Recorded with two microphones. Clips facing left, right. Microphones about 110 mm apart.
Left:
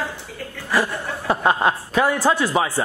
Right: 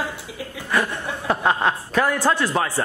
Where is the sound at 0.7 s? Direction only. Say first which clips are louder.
Left 1 dB; centre (ahead or behind).